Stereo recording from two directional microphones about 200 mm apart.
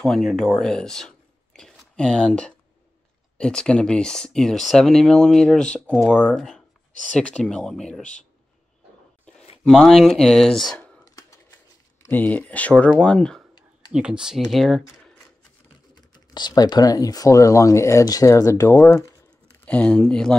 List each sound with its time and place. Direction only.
0.0 s speech: centre (ahead or behind)
9.7 s speech: centre (ahead or behind)
11.1 s a sound: 15° left (ahead or behind)
12.1 s speech: 10° left (ahead or behind)
15.9 s speech: 20° left (ahead or behind); by 20.3 s 5° left (ahead or behind)